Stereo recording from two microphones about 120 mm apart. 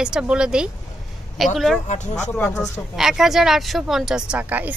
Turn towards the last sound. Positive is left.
turn(degrees=-10)  # may be behind; listen again after turning